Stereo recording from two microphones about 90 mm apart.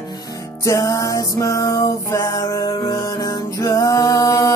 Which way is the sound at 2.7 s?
60° left (ahead or behind).